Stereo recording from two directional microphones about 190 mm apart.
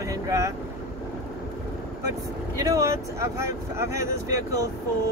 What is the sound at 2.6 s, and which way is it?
Speech, 15° right (ahead or behind).